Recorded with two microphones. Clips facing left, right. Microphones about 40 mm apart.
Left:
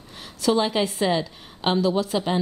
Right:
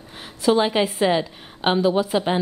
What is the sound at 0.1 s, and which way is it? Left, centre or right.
A woman's voice, right.